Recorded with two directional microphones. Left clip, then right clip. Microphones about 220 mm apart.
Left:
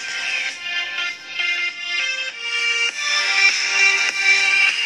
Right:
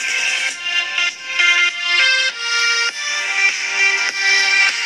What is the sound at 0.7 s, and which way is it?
Music, 45° right (ahead or behind).